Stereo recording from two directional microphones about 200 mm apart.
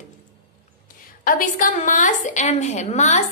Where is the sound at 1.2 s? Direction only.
45° left (ahead or behind).